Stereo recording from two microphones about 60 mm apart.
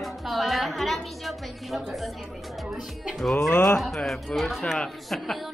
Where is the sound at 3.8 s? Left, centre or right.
Centre.